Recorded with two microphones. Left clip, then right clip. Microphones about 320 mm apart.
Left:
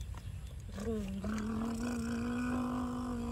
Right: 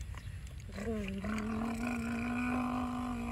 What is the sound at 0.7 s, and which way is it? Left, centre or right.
Roaring cats, centre.